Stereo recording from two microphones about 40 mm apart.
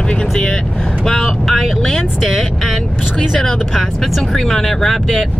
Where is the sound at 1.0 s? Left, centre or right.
Centre.